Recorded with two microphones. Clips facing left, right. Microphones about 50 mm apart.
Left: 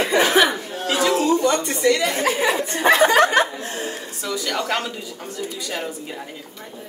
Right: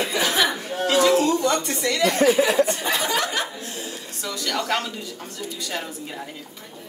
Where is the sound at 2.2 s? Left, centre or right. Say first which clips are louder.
Right 3 dB; left.